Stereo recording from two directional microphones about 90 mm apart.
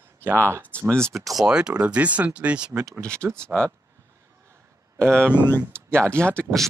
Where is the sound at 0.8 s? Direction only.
10° left (ahead or behind).